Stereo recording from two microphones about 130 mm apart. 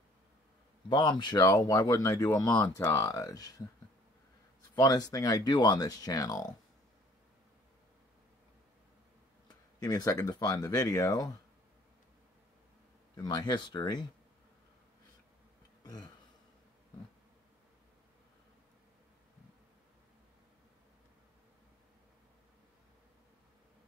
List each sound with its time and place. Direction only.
0.8 s speech: 35° left (ahead or behind)
4.7 s speech: 30° left (ahead or behind)
9.8 s speech: 30° left (ahead or behind)
13.1 s speech: 35° left (ahead or behind)
15.8 s a sound: 30° left (ahead or behind)